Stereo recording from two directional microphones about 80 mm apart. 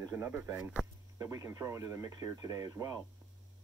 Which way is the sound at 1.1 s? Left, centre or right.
Right.